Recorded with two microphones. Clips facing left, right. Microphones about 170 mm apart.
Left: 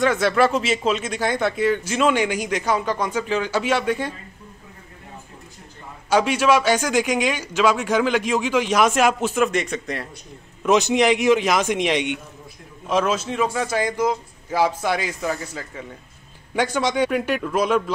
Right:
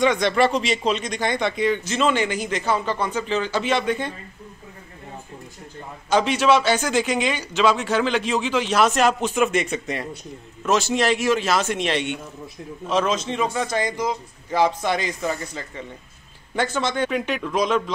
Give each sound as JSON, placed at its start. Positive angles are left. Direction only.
{"t": 0.0, "sound": "speech", "side_deg": 5}
{"t": 6.0, "sound": "speech", "side_deg": 10}
{"t": 9.4, "sound": "speech", "side_deg": -5}
{"t": 10.6, "sound": "speech", "side_deg": 15}